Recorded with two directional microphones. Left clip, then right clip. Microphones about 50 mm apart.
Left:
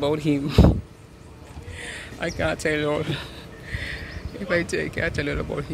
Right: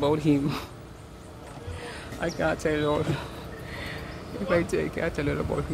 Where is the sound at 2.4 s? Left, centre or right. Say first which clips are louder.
Left 2 dB; left.